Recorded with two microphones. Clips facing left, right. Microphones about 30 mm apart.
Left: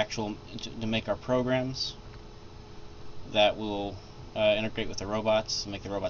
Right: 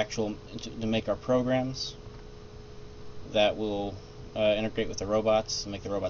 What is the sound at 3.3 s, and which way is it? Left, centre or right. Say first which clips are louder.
Speech: even; centre.